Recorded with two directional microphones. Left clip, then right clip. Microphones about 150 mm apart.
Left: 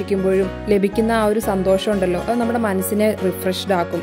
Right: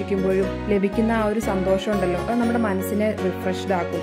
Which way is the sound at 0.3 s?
25° left (ahead or behind).